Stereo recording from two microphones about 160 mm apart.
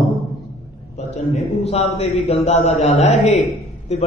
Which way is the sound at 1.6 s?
40° left (ahead or behind).